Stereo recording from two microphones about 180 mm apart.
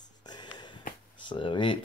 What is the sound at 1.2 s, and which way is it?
Speech, 30° left (ahead or behind).